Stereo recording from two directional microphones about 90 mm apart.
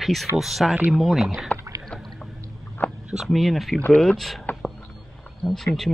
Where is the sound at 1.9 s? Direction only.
10° left (ahead or behind).